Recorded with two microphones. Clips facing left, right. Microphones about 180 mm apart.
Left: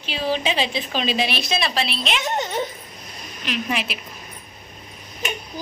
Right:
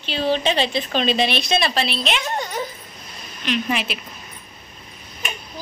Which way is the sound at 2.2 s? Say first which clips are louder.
Left 2 dB; 25° left (ahead or behind).